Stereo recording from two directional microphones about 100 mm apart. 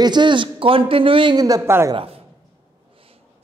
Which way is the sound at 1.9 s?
75° right (ahead or behind).